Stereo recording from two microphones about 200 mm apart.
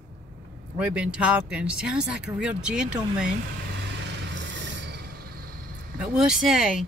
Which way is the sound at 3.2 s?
60° right (ahead or behind).